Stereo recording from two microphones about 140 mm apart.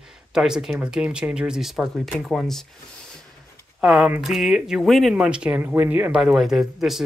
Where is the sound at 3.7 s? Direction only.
5° right (ahead or behind).